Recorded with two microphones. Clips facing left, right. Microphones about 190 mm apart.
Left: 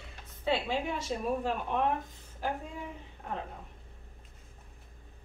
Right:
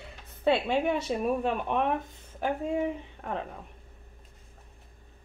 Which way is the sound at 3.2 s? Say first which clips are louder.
Right 4 dB; 80° right.